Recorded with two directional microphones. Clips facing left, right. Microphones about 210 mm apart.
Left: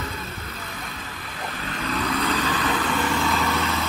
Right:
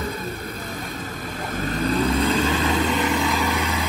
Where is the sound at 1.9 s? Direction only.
30° right (ahead or behind).